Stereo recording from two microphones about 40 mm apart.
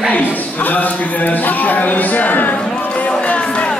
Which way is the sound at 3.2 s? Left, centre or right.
Left.